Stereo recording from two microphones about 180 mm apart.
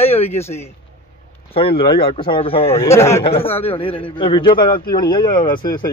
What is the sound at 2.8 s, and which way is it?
Speech, 15° left (ahead or behind).